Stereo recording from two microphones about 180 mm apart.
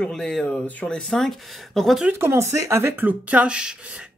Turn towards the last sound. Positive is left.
turn(degrees=-5)  # may be behind; listen again after turning